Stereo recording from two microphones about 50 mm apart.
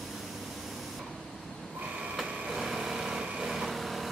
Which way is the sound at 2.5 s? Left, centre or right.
Centre.